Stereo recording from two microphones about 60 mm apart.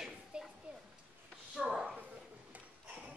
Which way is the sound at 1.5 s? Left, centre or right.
Centre.